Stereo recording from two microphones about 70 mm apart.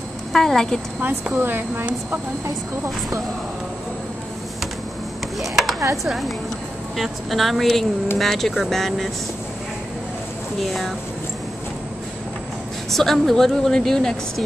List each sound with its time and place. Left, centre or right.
0.3 s a woman's voice: centre
1.3 s speech: right
5.4 s a sound: centre
6.0 s a woman's voice: centre
10.6 s a woman's voice: centre
12.9 s a woman's voice: centre